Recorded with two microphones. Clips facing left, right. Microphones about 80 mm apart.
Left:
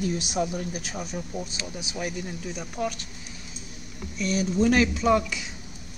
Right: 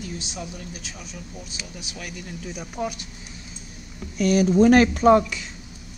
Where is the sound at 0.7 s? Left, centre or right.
Left.